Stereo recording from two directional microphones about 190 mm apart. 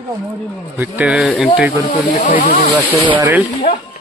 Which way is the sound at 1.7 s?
45° left (ahead or behind).